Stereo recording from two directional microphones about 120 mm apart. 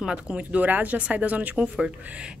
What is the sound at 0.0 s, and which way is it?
A woman's voice, 10° right (ahead or behind).